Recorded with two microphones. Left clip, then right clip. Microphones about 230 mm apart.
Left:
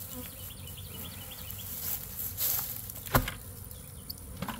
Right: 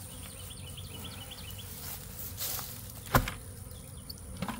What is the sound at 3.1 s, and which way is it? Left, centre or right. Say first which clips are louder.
Insect: right 1 dB; centre.